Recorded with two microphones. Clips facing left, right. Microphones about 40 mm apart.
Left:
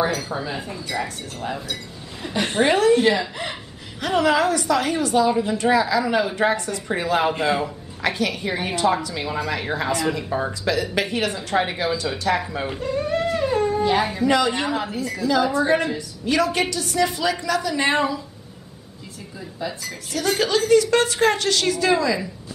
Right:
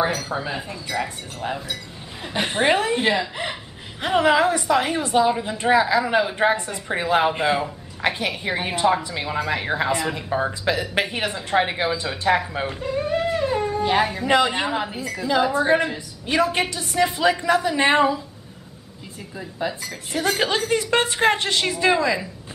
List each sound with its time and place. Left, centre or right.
0.3 s a woman's voice: centre
5.3 s speech: centre
5.6 s a woman's voice: right
12.6 s speech: centre
14.2 s a woman's voice: right
16.3 s a woman's voice: right
19.6 s a woman's voice: right